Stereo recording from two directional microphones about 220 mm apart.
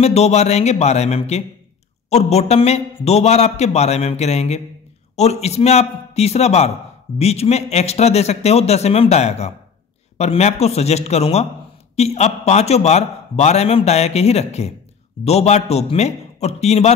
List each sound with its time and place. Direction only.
0.0 s a man's voice: 30° left (ahead or behind)